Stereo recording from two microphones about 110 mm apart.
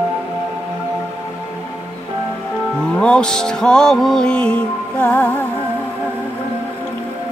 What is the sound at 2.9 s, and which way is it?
Music, 10° left (ahead or behind).